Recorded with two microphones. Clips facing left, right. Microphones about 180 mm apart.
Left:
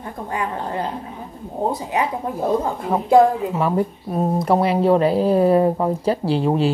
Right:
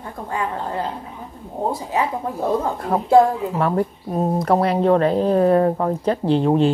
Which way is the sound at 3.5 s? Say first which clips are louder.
Even; 5° left (ahead or behind).